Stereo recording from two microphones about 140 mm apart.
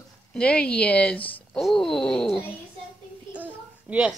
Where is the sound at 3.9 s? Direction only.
10° right (ahead or behind).